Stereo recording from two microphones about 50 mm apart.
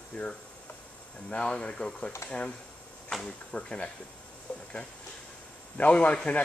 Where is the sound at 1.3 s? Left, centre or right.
Centre.